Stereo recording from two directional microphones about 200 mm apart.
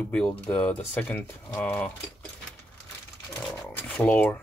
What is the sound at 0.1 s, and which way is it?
Speech, 5° left (ahead or behind).